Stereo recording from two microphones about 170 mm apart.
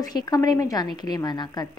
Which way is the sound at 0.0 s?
25° left (ahead or behind).